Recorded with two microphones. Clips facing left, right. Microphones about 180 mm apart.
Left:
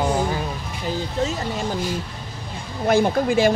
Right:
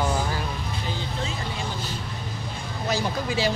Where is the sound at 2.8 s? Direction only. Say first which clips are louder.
Left 9 dB; 50° left (ahead or behind).